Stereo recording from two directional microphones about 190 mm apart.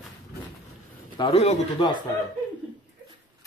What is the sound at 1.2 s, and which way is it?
Speech, 30° left (ahead or behind).